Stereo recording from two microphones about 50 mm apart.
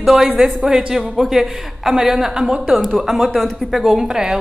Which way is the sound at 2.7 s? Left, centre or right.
Centre.